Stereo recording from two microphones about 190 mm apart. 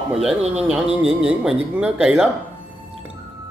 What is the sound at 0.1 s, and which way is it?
Speech, 5° right (ahead or behind).